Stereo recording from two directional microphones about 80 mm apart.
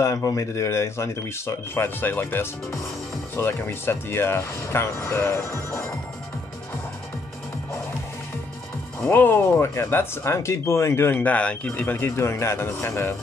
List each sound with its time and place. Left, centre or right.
0.0 s speech: left
9.1 s speech: left